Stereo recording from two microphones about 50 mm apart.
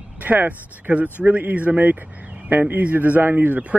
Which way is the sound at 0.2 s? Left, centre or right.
Right.